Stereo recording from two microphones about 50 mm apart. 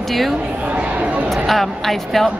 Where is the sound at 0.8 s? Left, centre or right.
Right.